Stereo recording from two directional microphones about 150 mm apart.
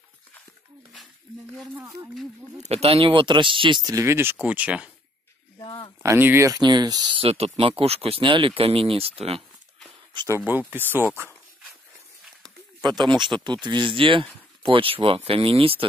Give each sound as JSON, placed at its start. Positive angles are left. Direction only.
{"t": 2.6, "sound": "speech", "side_deg": -40}
{"t": 5.6, "sound": "a sound", "side_deg": 30}
{"t": 6.0, "sound": "speech", "side_deg": -15}
{"t": 10.1, "sound": "speech", "side_deg": -20}
{"t": 12.4, "sound": "speech", "side_deg": -30}